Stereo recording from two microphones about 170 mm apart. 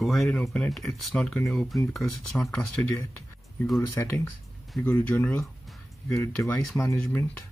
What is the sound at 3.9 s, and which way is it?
Speech, 10° left (ahead or behind).